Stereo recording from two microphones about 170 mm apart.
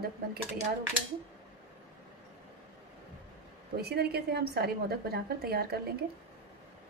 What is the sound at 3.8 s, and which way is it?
A woman's voice, 70° right (ahead or behind).